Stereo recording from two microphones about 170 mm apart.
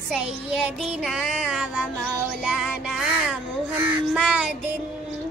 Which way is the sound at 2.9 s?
5° right (ahead or behind).